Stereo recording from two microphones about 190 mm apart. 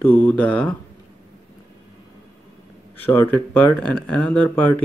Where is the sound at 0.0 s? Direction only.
10° left (ahead or behind).